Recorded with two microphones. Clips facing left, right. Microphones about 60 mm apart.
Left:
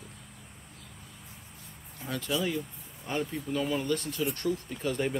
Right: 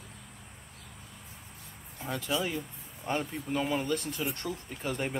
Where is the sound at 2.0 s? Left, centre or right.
Centre.